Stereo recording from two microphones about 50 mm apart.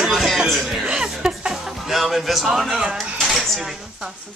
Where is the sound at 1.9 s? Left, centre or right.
Centre.